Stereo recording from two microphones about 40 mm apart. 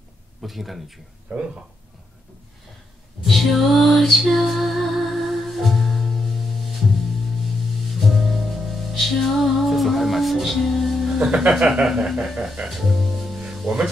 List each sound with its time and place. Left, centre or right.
0.4 s speech: centre
1.3 s speech: centre
3.3 s music: centre
8.0 s music: centre
11.5 s a sound: centre
12.6 s speech: centre
13.5 s music: centre